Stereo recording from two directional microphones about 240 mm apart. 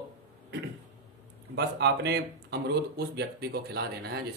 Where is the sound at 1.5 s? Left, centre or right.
Right.